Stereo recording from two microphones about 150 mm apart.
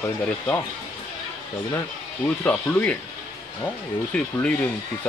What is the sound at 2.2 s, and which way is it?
Speech, 10° left (ahead or behind).